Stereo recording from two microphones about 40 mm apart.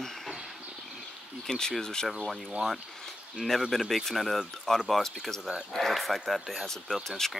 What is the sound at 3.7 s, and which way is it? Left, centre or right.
Speech, centre.